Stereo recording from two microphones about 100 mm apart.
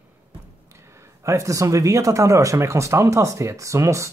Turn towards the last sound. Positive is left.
turn(degrees=-30)  # may be behind; listen again after turning